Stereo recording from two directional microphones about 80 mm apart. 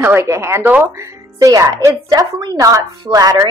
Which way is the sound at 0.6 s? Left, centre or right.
Centre.